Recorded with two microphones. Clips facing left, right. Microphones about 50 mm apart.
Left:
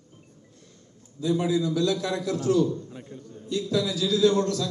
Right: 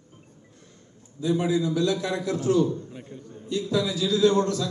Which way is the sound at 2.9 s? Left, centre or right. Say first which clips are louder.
Even; right.